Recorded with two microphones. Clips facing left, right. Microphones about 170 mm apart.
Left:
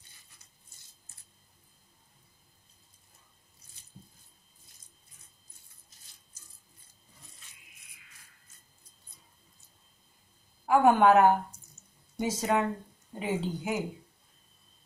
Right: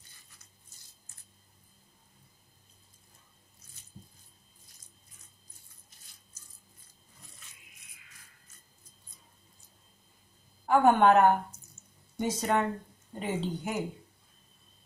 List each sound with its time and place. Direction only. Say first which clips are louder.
10.7 s a woman's voice: left 1 dB; 5° left (ahead or behind)